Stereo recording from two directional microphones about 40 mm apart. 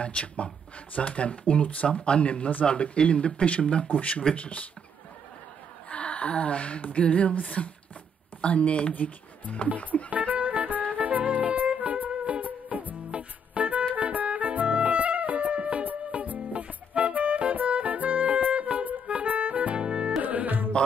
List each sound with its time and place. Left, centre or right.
0.0 s speech: left
5.9 s speech: left
10.0 s music: right
20.2 s music: right